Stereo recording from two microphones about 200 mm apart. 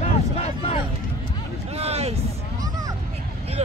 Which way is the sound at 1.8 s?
30° right (ahead or behind).